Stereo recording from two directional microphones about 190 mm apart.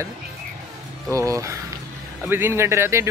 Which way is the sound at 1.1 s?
15° right (ahead or behind).